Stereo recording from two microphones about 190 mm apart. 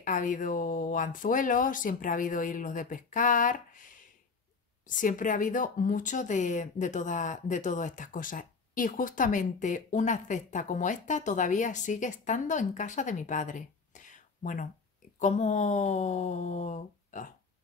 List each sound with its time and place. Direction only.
0.0 s speech: 45° left (ahead or behind)